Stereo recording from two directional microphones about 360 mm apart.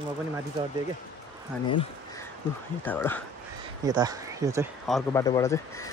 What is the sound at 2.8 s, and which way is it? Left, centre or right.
Speech, centre.